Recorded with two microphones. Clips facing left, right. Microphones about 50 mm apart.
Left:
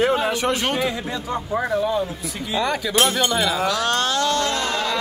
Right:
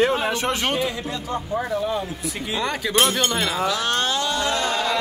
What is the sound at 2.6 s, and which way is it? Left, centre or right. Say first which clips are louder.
Speech: left 3 dB; right.